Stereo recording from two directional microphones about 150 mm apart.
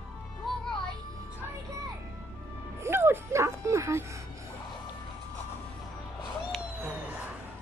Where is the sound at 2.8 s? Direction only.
15° right (ahead or behind).